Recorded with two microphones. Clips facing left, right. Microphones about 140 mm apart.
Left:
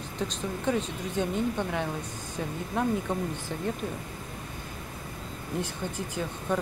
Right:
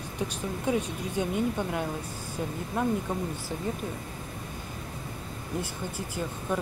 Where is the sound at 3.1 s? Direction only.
10° right (ahead or behind).